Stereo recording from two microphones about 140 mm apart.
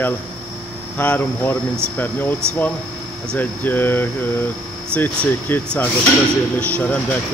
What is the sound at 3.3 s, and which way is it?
Speech, 15° left (ahead or behind).